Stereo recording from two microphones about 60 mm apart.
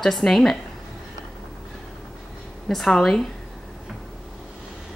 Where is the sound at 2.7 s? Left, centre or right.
Centre.